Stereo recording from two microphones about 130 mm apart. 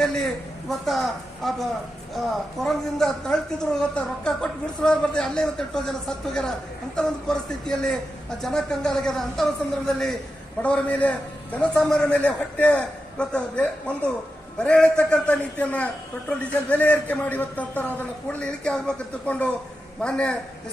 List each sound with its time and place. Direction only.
0.0 s a man's voice: 5° left (ahead or behind)